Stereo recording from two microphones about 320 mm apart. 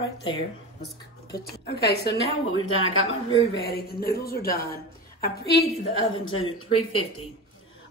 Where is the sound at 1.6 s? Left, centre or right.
Left.